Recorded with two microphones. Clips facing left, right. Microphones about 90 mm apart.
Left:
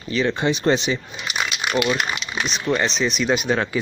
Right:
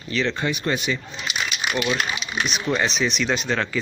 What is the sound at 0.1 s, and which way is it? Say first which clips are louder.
Speech: left 3 dB; 15° left (ahead or behind).